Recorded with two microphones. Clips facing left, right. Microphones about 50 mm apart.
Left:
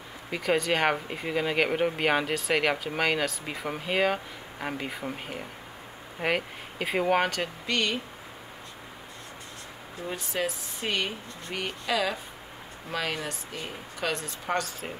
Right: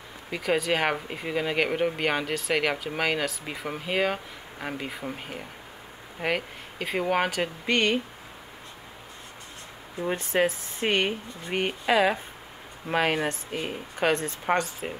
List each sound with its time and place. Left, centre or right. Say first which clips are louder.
0.3 s speech: even; centre
7.6 s speech: right 5 dB; right
10.0 s speech: right 6 dB; right
14.4 s speech: right 4 dB; right